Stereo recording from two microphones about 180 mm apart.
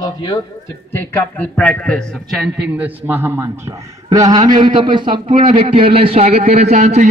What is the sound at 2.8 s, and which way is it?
A man's voice, 10° right (ahead or behind).